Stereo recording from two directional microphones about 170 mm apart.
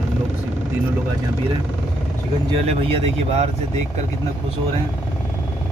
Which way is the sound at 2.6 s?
35° right (ahead or behind).